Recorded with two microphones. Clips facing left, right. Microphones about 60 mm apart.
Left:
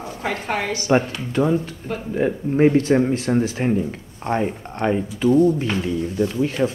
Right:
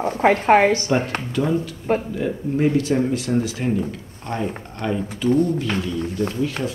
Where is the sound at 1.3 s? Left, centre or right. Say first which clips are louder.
Left 3 dB; left.